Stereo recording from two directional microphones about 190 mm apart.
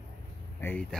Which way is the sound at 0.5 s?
10° left (ahead or behind).